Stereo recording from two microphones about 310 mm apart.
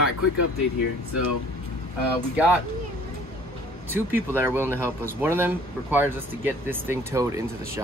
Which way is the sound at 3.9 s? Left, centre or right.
Centre.